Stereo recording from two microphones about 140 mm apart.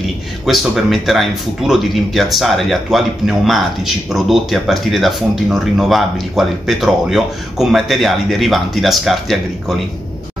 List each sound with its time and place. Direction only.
0.5 s speech: centre (ahead or behind)